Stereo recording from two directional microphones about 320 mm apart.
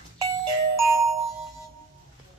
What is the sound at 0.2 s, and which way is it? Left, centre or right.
Music, centre.